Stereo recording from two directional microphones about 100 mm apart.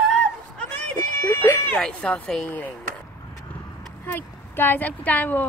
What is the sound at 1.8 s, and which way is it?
Speech, 10° left (ahead or behind).